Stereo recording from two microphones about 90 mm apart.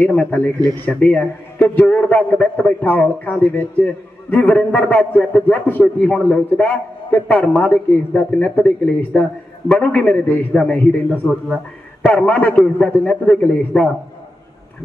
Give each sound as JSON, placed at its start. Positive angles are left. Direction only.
{"t": 0.0, "sound": "a man's voice", "side_deg": 20}